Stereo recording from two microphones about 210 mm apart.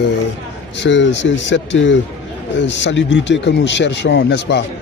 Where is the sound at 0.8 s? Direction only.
60° left (ahead or behind).